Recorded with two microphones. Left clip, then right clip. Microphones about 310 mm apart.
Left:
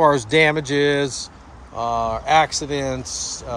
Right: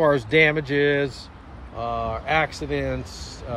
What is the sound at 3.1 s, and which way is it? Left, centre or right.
Speech, left.